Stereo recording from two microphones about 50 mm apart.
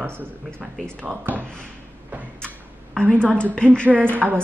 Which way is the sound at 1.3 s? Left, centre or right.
Right.